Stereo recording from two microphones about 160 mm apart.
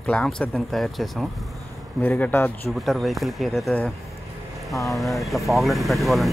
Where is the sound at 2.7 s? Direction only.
Centre (ahead or behind).